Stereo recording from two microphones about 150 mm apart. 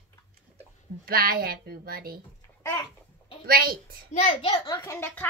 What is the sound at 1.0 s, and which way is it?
A woman's voice, 80° right.